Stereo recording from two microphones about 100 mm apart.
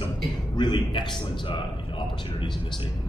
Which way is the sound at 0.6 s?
50° left (ahead or behind).